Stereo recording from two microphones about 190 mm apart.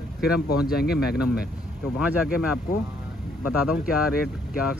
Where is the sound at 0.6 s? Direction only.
5° right (ahead or behind).